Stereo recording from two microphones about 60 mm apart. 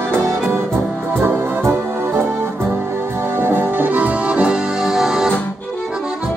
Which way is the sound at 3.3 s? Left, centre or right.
Right.